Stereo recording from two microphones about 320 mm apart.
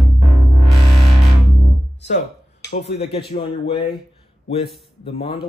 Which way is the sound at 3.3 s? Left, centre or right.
Centre.